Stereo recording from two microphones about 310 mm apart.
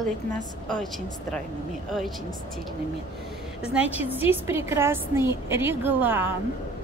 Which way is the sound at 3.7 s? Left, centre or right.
Centre.